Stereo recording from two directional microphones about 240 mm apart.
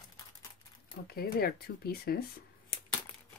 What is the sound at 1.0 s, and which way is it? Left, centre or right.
Speech, left.